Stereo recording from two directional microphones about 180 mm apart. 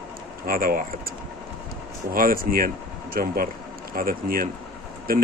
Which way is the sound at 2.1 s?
50° right (ahead or behind).